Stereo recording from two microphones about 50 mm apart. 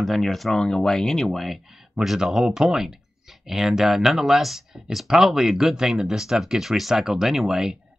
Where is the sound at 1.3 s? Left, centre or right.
Centre.